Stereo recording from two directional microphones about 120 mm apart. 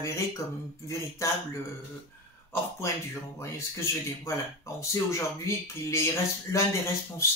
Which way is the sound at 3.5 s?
25° left (ahead or behind).